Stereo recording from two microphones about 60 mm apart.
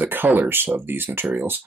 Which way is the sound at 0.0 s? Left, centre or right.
Right.